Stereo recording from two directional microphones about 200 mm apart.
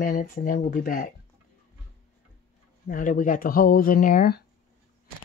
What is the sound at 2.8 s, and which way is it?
Speech, 40° left (ahead or behind).